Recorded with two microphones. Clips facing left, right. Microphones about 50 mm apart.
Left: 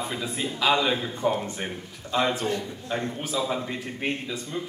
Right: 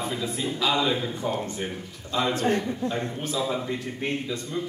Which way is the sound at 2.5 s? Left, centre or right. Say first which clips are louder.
Right 5 dB; right.